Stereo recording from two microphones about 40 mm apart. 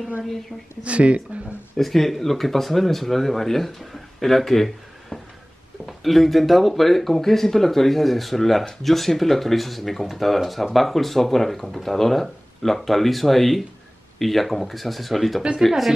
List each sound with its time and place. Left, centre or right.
0.8 s speech: right
1.8 s speech: centre